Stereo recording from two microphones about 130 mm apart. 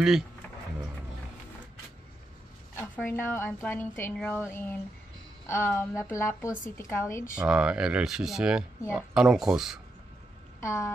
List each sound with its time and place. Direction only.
2.7 s a woman's voice: 20° left (ahead or behind)
7.3 s speech: 5° right (ahead or behind)
10.6 s a sound: 20° left (ahead or behind)